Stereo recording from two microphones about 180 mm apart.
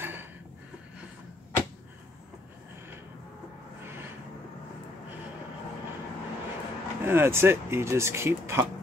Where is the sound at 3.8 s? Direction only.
10° right (ahead or behind).